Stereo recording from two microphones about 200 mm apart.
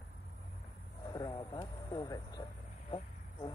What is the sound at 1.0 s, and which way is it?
Vehicle, 15° left (ahead or behind).